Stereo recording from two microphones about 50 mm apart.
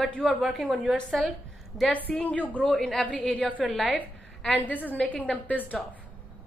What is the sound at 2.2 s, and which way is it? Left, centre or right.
Speech, left.